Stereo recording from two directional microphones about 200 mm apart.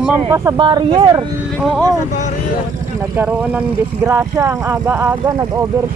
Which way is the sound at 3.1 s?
10° right (ahead or behind).